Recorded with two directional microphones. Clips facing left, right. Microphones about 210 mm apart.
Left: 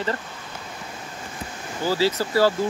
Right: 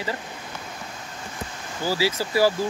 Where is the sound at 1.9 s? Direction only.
10° right (ahead or behind).